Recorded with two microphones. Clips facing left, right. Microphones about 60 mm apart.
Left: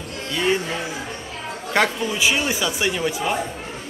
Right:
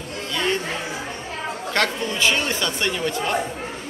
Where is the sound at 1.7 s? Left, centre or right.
Centre.